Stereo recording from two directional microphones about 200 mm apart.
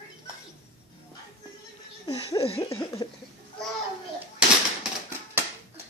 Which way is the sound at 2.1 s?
20° left (ahead or behind).